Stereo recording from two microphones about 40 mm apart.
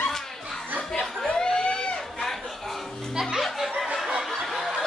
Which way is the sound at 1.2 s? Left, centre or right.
Centre.